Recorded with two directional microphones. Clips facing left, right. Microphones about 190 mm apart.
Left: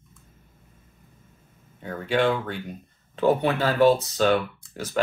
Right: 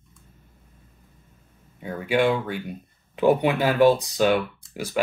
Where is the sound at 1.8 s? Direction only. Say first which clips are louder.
Right 1 dB; 10° right (ahead or behind).